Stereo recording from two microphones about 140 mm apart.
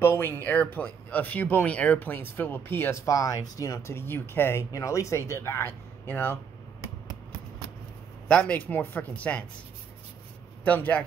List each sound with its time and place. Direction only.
0.0 s speech: 15° left (ahead or behind)
8.3 s speech: 10° left (ahead or behind)
10.6 s speech: 10° left (ahead or behind)